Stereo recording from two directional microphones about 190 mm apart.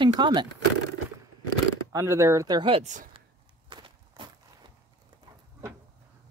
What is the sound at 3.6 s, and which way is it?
Walk, 25° right (ahead or behind).